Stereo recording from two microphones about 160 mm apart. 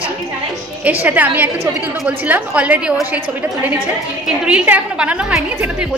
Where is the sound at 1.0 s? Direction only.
10° right (ahead or behind).